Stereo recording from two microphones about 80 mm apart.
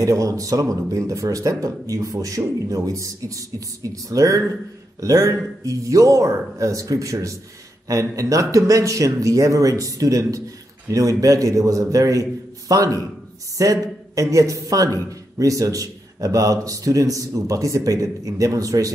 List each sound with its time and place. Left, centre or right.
0.0 s a man's voice: right